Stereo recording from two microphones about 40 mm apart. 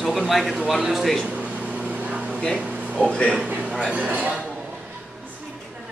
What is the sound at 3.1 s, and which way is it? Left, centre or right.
Speech, left.